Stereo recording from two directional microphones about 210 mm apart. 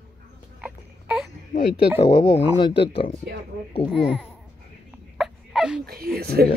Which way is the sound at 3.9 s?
5° right (ahead or behind).